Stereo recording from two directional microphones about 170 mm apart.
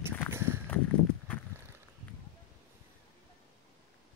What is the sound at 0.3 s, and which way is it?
Walk, 15° right (ahead or behind).